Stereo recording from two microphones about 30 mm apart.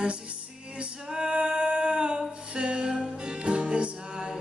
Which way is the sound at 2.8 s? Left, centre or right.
Right.